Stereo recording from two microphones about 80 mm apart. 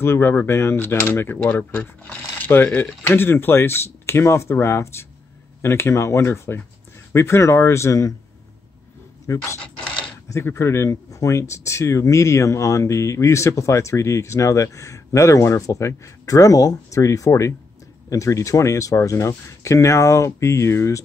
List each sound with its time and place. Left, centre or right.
0.0 s speech: left
1.6 s speech: centre
2.5 s speech: left
9.3 s speech: left